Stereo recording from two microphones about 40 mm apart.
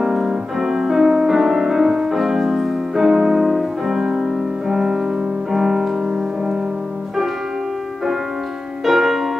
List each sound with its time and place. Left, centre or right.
0.0 s music: centre
8.8 s music: centre